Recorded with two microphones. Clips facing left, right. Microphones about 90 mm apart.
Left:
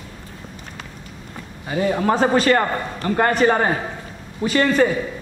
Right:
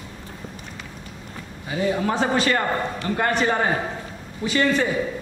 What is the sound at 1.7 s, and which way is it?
A man's voice, 50° left (ahead or behind).